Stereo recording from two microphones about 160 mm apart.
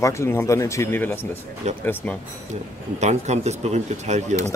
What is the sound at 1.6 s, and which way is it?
Speech, 45° right (ahead or behind).